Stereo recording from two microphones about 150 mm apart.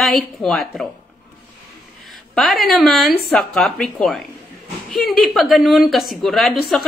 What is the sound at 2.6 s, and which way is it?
Speech, centre (ahead or behind).